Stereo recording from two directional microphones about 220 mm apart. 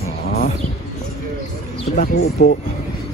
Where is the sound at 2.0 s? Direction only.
40° left (ahead or behind).